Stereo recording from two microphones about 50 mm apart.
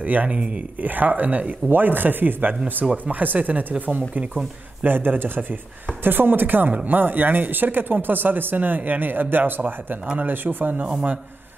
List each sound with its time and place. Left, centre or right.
0.0 s speech: right
0.3 s speech: right
0.7 s speech: right
10.8 s a man's voice: centre